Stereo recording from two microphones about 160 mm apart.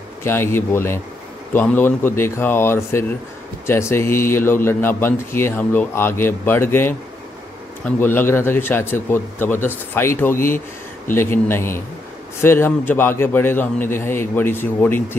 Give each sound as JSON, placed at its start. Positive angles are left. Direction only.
{"t": 0.2, "sound": "a man's voice", "side_deg": 15}
{"t": 8.0, "sound": "a man's voice", "side_deg": 15}